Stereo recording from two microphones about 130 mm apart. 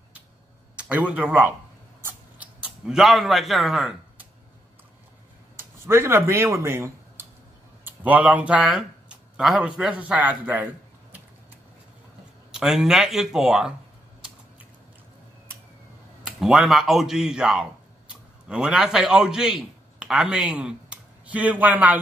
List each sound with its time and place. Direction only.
0.7 s a man's voice: 10° right (ahead or behind)
2.0 s a sound: 10° right (ahead or behind)
5.6 s a man's voice: 20° right (ahead or behind)
12.4 s speech: 5° right (ahead or behind)
16.3 s a man's voice: 5° right (ahead or behind)